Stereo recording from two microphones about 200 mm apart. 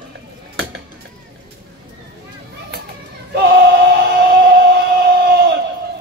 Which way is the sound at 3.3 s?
55° right (ahead or behind).